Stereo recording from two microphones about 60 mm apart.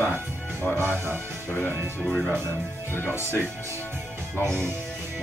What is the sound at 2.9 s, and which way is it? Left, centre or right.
Speech, left.